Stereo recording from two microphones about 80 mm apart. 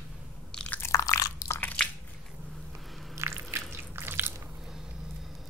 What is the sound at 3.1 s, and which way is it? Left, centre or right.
Squish, right.